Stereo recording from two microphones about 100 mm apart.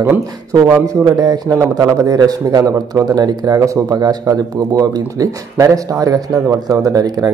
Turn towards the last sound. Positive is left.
turn(degrees=-40)  # may be behind; listen again after turning